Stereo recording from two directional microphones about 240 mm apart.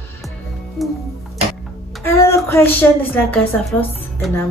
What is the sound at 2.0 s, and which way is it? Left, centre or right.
Child singing, centre.